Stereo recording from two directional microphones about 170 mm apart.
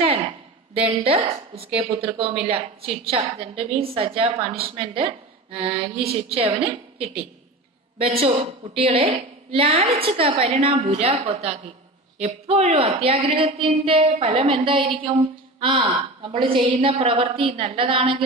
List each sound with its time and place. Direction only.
1.0 s a woman's voice: 35° right (ahead or behind)
8.0 s a woman's voice: 35° right (ahead or behind)